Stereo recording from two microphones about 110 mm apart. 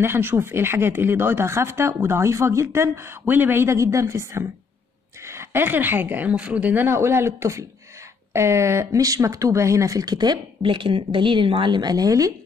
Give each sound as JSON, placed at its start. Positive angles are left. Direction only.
{"t": 0.0, "sound": "speech", "side_deg": -20}